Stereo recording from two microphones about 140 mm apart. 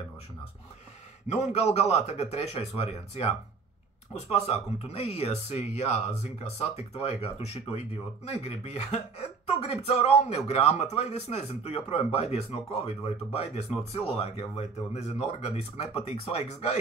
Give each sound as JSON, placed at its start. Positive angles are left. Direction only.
{"t": 1.3, "sound": "a man's voice", "side_deg": 50}